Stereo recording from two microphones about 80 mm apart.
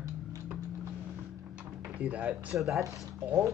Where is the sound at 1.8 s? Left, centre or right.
Centre.